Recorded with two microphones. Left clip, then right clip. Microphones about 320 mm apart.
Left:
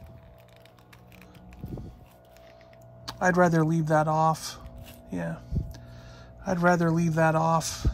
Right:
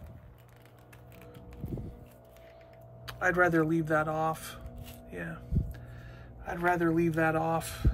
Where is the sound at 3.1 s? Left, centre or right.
Centre.